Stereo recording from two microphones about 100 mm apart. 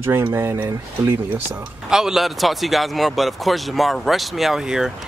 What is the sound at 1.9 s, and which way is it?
A man's voice, 5° right (ahead or behind).